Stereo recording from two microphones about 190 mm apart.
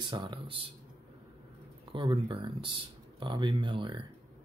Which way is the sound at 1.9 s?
25° right (ahead or behind).